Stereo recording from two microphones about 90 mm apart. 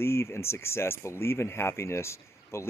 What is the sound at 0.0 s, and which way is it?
Speech, 30° left (ahead or behind).